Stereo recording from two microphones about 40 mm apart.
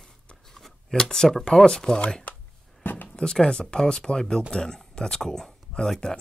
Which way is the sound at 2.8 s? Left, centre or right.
Left.